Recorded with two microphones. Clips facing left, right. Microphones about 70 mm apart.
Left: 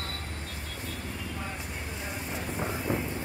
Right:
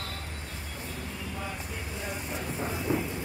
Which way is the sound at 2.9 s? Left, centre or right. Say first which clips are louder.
Right 2 dB; left.